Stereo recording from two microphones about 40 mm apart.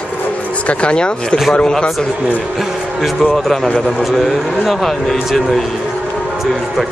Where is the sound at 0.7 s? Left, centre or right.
Left.